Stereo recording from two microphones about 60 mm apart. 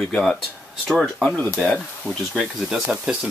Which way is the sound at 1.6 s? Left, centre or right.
Centre.